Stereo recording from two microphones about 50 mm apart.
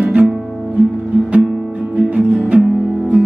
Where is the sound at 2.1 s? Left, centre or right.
Right.